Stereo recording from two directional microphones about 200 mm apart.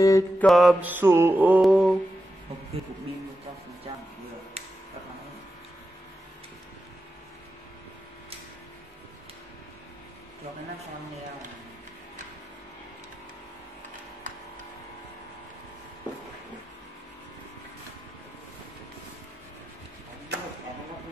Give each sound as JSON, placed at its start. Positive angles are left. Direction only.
{"t": 0.0, "sound": "mantra", "side_deg": 15}
{"t": 0.5, "sound": "mantra", "side_deg": 0}